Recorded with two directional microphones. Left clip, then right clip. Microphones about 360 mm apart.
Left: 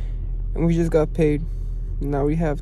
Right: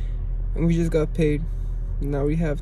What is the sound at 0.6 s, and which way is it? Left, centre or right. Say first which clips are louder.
Speech: left 3 dB; centre.